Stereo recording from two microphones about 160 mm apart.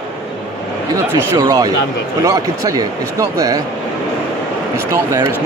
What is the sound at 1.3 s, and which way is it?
Speech, 20° right (ahead or behind).